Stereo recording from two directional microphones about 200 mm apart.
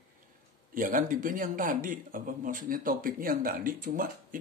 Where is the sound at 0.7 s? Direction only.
45° right (ahead or behind).